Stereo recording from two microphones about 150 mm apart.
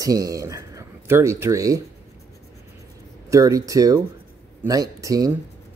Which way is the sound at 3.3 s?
25° right (ahead or behind).